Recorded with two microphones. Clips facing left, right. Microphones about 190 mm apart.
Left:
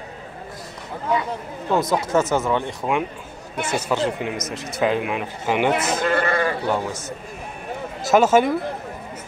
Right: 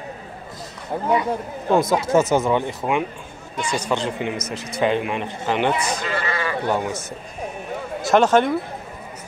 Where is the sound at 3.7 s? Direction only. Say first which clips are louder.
Left 1 dB; 5° left (ahead or behind).